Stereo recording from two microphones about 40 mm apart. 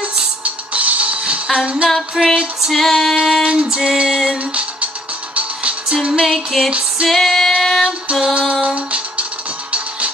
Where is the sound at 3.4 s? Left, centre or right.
Right.